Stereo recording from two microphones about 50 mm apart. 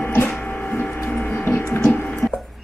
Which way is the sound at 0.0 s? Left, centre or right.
Left.